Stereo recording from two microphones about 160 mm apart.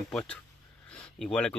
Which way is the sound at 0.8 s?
5° left (ahead or behind).